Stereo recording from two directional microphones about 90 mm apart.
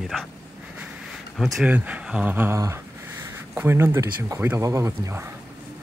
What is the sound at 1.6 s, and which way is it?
Speech, 15° right (ahead or behind).